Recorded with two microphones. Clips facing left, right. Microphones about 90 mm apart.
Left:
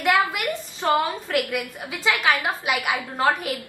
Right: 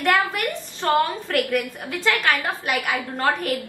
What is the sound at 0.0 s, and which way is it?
A woman's voice, 10° left (ahead or behind).